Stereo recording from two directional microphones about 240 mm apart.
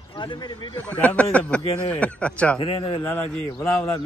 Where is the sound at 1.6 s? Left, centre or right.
Left.